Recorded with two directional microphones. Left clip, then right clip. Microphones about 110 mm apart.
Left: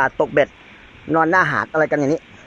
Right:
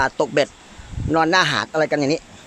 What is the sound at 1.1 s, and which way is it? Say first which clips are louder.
Speech: left 1 dB; 10° right (ahead or behind).